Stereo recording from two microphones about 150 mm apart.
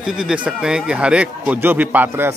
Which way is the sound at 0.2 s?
5° right (ahead or behind).